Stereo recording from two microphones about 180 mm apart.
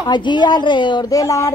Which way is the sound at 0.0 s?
25° left (ahead or behind).